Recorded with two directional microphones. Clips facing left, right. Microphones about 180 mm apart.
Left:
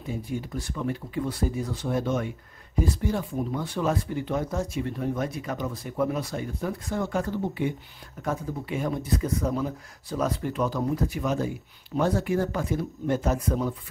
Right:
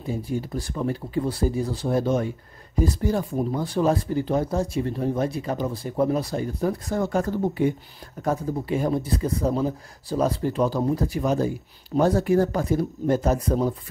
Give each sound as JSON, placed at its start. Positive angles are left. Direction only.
{"t": 0.0, "sound": "speech", "side_deg": -35}